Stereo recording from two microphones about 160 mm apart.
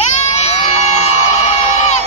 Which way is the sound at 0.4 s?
45° left (ahead or behind).